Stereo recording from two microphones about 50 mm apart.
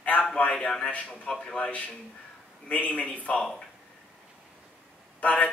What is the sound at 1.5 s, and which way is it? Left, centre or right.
A man's voice, left.